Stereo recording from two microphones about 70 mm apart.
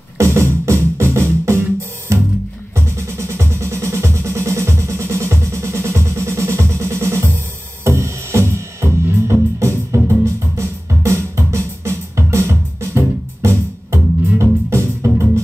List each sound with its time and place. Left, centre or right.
0.2 s music: right